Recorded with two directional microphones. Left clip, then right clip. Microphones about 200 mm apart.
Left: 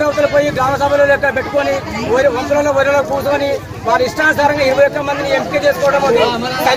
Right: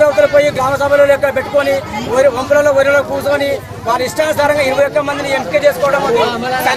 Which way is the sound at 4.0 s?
15° right (ahead or behind).